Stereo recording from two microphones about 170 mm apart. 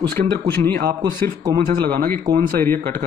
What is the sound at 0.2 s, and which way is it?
Speech, 45° right (ahead or behind).